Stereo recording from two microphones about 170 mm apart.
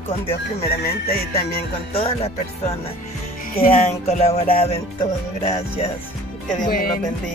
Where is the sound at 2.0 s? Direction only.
35° left (ahead or behind).